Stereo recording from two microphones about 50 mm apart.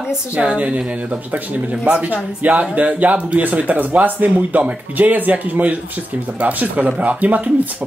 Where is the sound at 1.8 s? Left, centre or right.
Right.